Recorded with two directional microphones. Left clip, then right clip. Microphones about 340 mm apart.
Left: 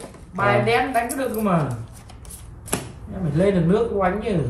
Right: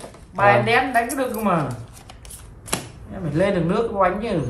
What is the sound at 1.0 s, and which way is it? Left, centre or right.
Speech, centre.